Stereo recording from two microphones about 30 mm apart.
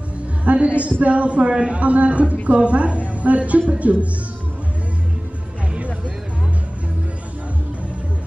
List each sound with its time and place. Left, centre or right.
0.5 s speech: right